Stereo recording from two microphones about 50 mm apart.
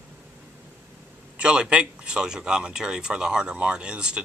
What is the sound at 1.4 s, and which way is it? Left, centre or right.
A man's voice, centre.